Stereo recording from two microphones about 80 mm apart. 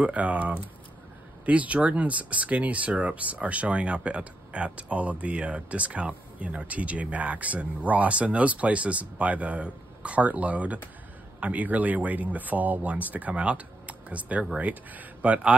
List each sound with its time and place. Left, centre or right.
0.0 s speech: centre